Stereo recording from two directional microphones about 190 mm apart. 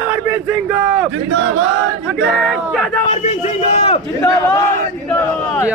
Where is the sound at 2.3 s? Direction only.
Centre (ahead or behind).